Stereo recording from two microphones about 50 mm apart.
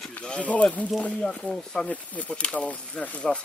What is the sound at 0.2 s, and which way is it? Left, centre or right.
Speech, left.